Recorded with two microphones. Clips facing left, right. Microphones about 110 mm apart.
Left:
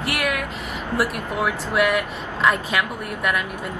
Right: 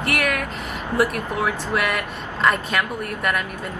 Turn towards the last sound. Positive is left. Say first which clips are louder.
# even
turn(degrees=0)  # may be behind; listen again after turning